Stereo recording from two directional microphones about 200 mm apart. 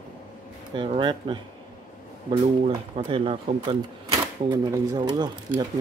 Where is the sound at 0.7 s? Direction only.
25° right (ahead or behind).